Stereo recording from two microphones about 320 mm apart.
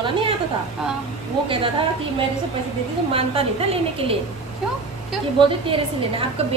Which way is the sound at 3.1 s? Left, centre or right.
Centre.